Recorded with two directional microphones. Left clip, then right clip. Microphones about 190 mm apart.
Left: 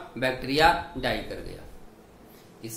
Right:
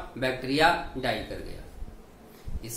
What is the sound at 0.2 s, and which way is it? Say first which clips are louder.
Speech: left 2 dB; 30° left (ahead or behind).